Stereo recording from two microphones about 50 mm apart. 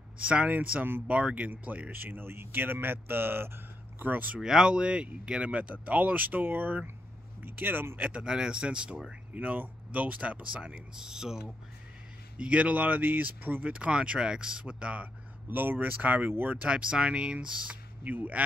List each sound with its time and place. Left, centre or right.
0.2 s speech: right
4.1 s speech: right
4.4 s speech: centre; by 8.1 s right
8.1 s speech: centre
9.3 s speech: right; by 11.4 s centre
12.4 s speech: right
13.7 s speech: right
15.4 s speech: right
16.6 s speech: centre
18.0 s speech: right